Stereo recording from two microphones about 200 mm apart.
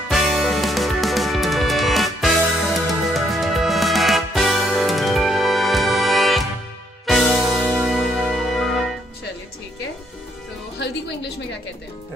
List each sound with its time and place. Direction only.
0.1 s music: centre (ahead or behind)
10.8 s music: 60° left (ahead or behind)